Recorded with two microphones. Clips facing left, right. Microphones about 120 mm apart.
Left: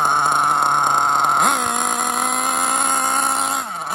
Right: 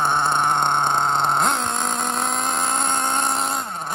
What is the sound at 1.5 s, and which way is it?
Vehicle, 10° left (ahead or behind).